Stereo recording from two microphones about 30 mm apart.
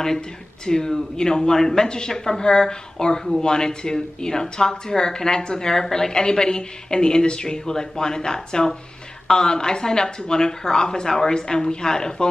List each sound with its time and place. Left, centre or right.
0.7 s speech: left